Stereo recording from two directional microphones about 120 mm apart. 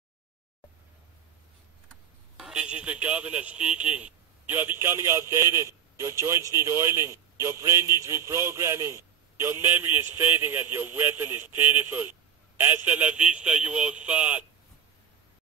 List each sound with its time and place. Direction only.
2.3 s a man's voice: 5° right (ahead or behind)